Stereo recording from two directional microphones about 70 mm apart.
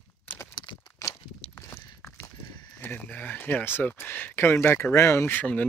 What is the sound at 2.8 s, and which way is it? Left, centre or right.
Speech, left.